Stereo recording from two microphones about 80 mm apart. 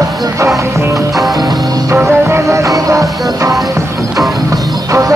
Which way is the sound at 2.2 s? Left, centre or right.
Right.